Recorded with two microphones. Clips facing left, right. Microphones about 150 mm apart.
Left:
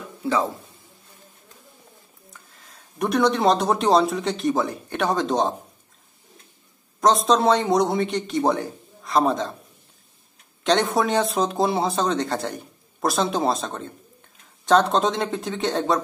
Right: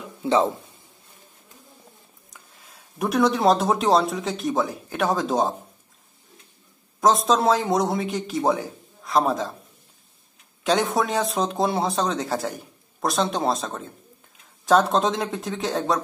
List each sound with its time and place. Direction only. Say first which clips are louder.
0.2 s a sound: right 3 dB; 25° right (ahead or behind)
2.7 s speech: left 1 dB; centre (ahead or behind)
7.0 s speech: left 1 dB; centre (ahead or behind)
10.6 s speech: left 1 dB; centre (ahead or behind)